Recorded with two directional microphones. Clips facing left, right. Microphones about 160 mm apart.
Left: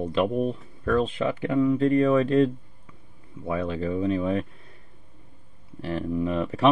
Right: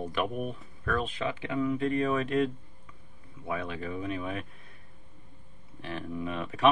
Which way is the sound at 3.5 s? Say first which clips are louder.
Left 7 dB; 35° left (ahead or behind).